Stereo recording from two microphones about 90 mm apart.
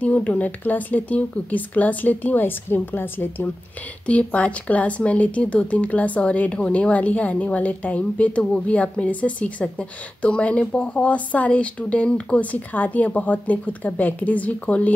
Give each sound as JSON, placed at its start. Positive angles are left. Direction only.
{"t": 0.0, "sound": "speech", "side_deg": 15}